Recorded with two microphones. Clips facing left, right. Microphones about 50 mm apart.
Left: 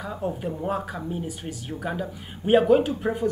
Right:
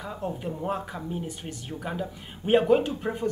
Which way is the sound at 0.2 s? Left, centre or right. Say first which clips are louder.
Left 3 dB; centre.